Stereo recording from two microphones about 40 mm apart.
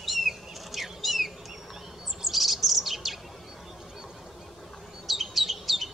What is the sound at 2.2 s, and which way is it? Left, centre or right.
Chirp, centre.